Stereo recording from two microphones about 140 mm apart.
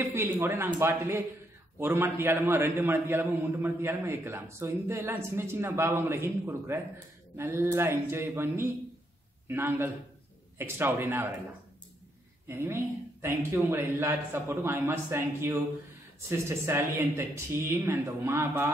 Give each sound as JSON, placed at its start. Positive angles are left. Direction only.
{"t": 0.0, "sound": "a man's voice", "side_deg": -15}
{"t": 12.4, "sound": "a man's voice", "side_deg": -20}